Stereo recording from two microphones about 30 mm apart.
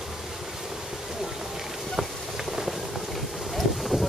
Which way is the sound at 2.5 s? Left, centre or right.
Centre.